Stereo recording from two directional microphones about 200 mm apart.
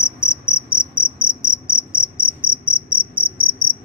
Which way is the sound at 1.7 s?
5° right (ahead or behind).